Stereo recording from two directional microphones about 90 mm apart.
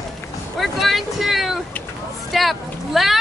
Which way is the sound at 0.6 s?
Centre (ahead or behind).